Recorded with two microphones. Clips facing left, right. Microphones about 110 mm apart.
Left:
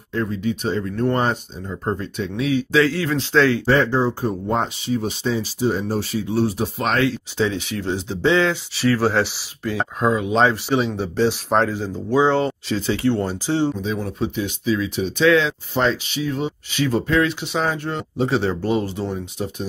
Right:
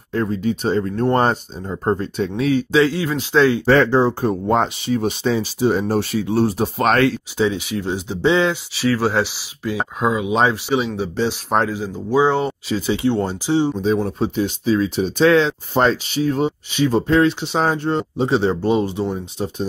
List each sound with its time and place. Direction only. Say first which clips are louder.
0.1 s speech: right 3 dB; 40° right (ahead or behind)
2.7 s speech: right 1 dB; 20° right (ahead or behind)
3.6 s speech: right 4 dB; 80° right; by 7.2 s 55° right (ahead or behind)
7.3 s speech: right 2 dB; 10° right (ahead or behind)
8.7 s speech: left 1 dB; 5° right (ahead or behind)
13.8 s speech: right 5 dB; 35° right (ahead or behind)
16.7 s speech: right 3 dB; 25° right (ahead or behind)